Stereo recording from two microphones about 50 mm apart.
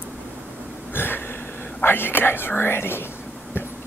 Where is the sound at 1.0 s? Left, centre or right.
Left.